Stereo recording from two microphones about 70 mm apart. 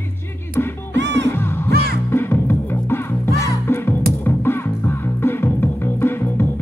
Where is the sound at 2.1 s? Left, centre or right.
Left.